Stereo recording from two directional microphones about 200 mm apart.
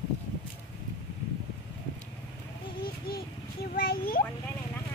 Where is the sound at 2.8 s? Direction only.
50° left (ahead or behind).